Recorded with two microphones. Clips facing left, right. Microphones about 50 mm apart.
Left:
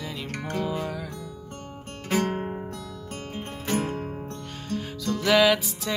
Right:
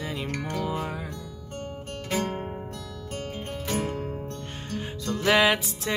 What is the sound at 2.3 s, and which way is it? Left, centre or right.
Music, left.